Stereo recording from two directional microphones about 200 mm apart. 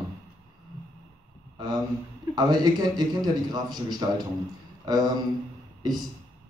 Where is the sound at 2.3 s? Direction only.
20° right (ahead or behind).